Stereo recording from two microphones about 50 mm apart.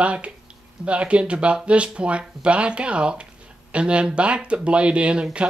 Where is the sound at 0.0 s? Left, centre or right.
Right.